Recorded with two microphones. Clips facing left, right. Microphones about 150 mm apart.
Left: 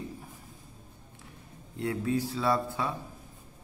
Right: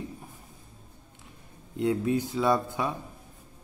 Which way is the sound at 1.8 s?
20° right (ahead or behind).